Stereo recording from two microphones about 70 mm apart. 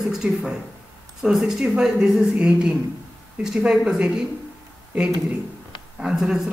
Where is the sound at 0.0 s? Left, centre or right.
Centre.